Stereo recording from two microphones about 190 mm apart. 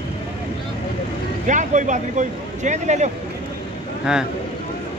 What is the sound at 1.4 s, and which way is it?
Speech, 40° right (ahead or behind).